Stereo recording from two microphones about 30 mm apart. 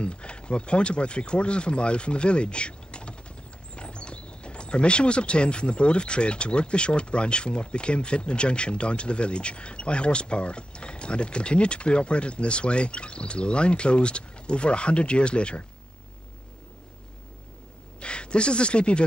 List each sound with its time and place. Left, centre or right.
0.0 s speech: left
18.0 s speech: left